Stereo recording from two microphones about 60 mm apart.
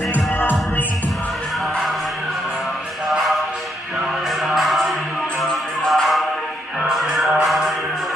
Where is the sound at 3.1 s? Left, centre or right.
Centre.